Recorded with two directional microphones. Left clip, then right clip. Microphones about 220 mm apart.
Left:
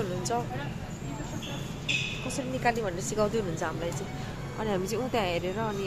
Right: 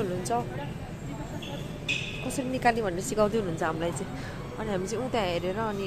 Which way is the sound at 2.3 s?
15° right (ahead or behind).